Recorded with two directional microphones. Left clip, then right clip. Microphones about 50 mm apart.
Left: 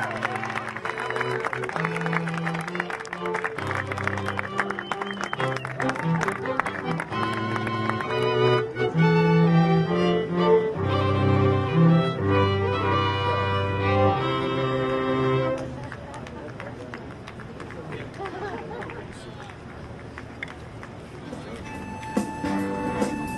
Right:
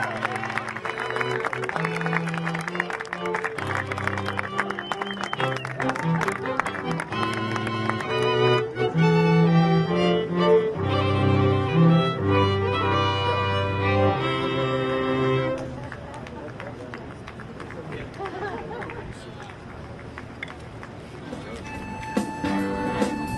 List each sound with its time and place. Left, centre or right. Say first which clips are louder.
0.0 s a sound: right 1 dB; left
0.8 s music: even; left
6.6 s music: even; centre
7.1 s music: even; right
18.3 s a sound: right 2 dB; left
22.1 s music: right 1 dB; left